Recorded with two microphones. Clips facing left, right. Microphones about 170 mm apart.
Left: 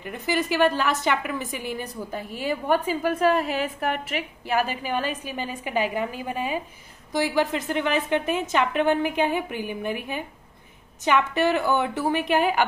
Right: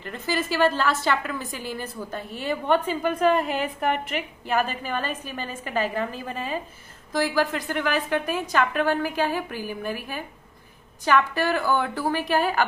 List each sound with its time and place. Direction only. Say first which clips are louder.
0.3 s a woman's voice: left 1 dB; 15° left (ahead or behind)